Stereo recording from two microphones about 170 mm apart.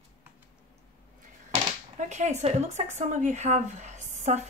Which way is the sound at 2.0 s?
40° right (ahead or behind).